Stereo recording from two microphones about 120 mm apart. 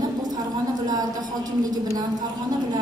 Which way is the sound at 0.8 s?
35° right (ahead or behind).